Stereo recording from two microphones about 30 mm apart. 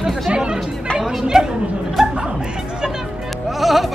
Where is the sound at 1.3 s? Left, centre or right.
Right.